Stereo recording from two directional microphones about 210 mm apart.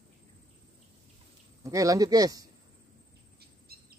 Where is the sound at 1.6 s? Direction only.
15° right (ahead or behind).